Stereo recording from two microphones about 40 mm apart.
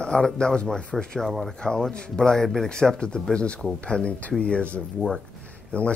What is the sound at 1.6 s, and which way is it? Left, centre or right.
Speech, centre.